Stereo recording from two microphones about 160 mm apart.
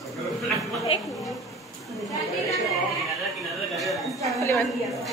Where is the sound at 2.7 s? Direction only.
Centre (ahead or behind).